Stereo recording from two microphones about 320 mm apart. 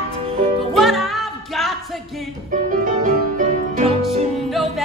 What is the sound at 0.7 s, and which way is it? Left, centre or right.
Music, centre.